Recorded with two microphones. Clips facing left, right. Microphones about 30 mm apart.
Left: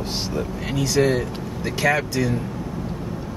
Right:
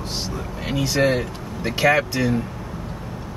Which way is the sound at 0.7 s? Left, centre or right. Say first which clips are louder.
Right 1 dB; centre.